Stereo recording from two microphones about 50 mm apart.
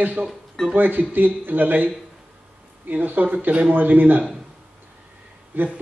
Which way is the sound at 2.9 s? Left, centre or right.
Right.